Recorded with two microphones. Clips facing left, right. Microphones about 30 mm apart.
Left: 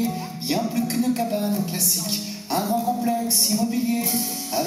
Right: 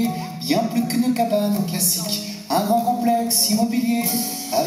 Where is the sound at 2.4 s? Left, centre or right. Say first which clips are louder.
Right 5 dB; centre.